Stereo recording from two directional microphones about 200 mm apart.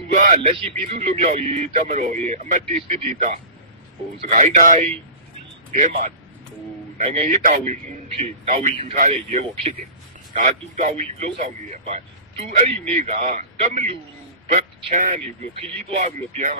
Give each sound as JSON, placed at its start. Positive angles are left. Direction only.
{"t": 0.1, "sound": "a man's voice", "side_deg": -40}
{"t": 4.3, "sound": "a man's voice", "side_deg": -40}